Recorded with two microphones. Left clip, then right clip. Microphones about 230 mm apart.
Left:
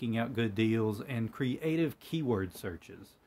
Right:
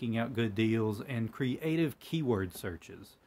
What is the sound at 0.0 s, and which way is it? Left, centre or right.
Speech, centre.